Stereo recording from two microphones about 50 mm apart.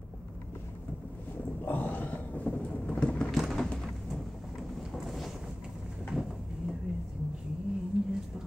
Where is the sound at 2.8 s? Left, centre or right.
Centre.